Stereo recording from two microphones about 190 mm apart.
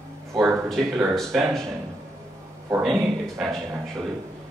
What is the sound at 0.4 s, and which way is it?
Speech, centre (ahead or behind).